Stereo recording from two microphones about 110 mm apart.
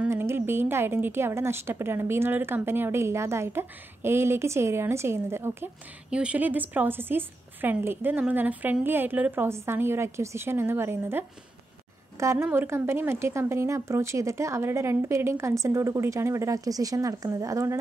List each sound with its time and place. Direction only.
0.1 s a woman's voice: 20° right (ahead or behind)
6.0 s a woman's voice: 10° right (ahead or behind); by 17.7 s 30° right (ahead or behind)